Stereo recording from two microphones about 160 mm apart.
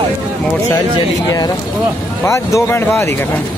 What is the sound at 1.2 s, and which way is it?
Speech, 25° left (ahead or behind).